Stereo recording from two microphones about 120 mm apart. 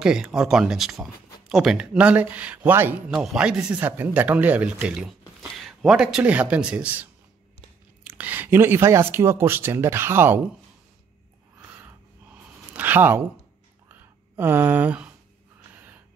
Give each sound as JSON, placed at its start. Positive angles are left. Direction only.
{"t": 0.0, "sound": "speech", "side_deg": -5}
{"t": 12.7, "sound": "a sound", "side_deg": -15}
{"t": 15.7, "sound": "gasp", "side_deg": -15}